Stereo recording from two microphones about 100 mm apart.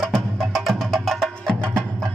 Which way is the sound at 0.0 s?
5° left (ahead or behind).